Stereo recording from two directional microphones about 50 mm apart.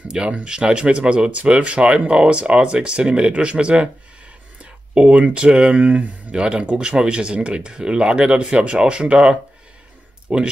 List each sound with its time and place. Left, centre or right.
0.4 s speech: centre
4.9 s speech: right